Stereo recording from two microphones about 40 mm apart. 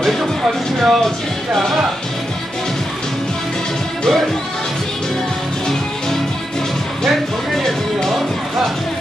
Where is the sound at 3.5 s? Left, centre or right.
Centre.